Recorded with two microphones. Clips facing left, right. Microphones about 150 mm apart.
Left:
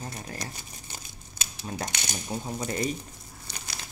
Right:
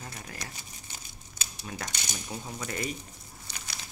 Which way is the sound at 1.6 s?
30° left (ahead or behind).